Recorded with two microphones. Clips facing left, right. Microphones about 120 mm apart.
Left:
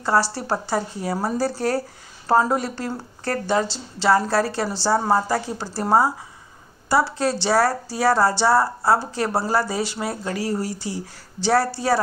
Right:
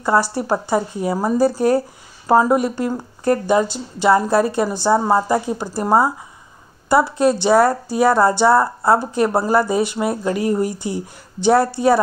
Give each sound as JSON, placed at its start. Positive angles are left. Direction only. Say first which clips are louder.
{"t": 0.3, "sound": "a woman's voice", "louder": "right 5 dB", "side_deg": -20}